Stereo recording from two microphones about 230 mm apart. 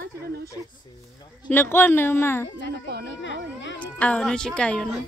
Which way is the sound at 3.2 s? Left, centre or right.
Left.